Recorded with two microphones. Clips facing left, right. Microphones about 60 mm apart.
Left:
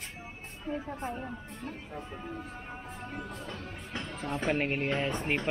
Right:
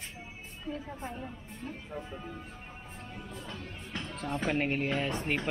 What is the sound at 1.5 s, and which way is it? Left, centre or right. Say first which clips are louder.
Speech: left 1 dB; left.